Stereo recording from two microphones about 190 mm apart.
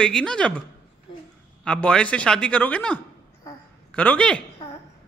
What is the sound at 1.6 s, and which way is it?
Speech, 5° left (ahead or behind).